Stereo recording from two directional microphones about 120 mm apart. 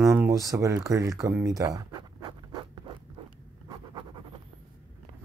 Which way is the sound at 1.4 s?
30° right (ahead or behind).